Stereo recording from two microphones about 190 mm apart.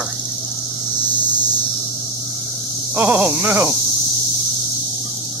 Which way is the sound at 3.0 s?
5° right (ahead or behind).